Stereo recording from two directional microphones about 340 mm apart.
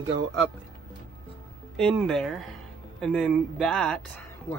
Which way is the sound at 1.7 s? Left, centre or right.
Centre.